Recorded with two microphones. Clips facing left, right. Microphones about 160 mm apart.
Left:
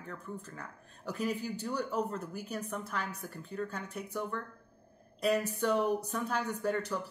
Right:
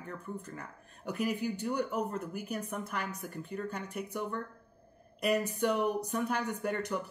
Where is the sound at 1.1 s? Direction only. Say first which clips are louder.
Right 1 dB; 60° right (ahead or behind).